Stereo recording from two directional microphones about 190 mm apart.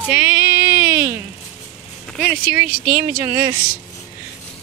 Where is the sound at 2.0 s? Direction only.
Centre (ahead or behind).